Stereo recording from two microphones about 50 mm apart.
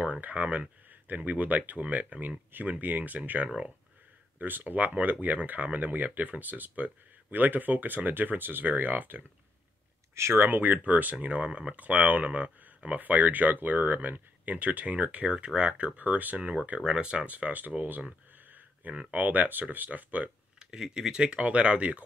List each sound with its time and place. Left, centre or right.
0.0 s speech: right
10.1 s speech: right
10.4 s speech: right
16.3 s speech: right
17.1 s speech: right
18.5 s a sound: right
19.1 s speech: right
20.5 s speech: centre